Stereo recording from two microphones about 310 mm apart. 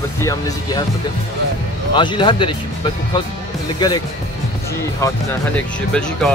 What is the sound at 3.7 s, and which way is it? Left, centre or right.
Speech, centre.